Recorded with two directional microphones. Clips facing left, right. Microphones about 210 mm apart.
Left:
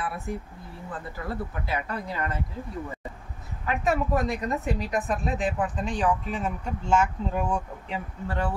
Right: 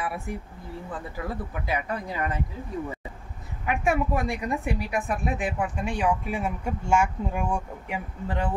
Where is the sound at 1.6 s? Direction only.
15° right (ahead or behind).